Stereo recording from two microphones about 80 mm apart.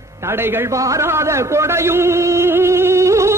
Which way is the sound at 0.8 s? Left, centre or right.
Right.